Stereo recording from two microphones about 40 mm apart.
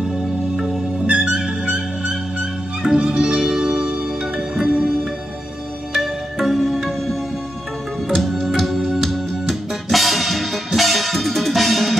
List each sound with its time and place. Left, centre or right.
1.0 s music: right
2.8 s music: centre
5.9 s music: centre
8.2 s music: centre